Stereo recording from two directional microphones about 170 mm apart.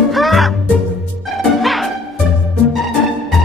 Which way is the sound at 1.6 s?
Centre (ahead or behind).